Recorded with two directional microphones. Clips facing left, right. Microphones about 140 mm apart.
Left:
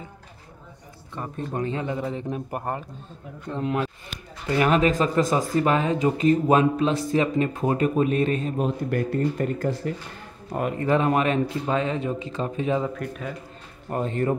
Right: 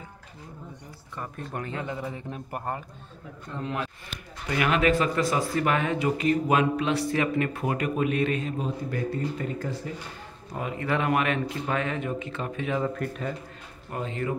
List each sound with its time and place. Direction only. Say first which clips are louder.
1.1 s a man's voice: left 5 dB; 20° left (ahead or behind)
5.2 s speech: left 3 dB; 45° left (ahead or behind)
5.5 s speech: left 4 dB; 30° left (ahead or behind)
8.5 s a man's voice: left 5 dB; 60° left (ahead or behind)
10.8 s a man's voice: left 4 dB; 35° left (ahead or behind)
12.9 s a man's voice: even; 5° right (ahead or behind)
13.8 s speech: left 6 dB; 45° left (ahead or behind)